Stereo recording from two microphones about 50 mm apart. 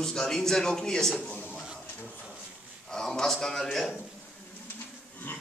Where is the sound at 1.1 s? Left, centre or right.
Left.